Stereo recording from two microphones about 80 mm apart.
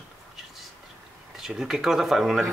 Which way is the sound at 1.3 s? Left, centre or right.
Centre.